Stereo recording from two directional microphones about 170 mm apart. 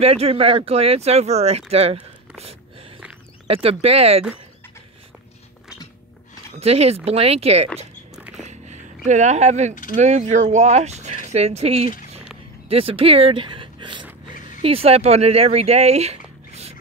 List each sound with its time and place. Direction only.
0.0 s speech: 35° right (ahead or behind)
3.4 s speech: 35° right (ahead or behind)
6.6 s speech: 35° right (ahead or behind)
8.2 s a sound: 5° right (ahead or behind)
8.5 s a sound: 45° right (ahead or behind)
9.9 s speech: 45° right (ahead or behind)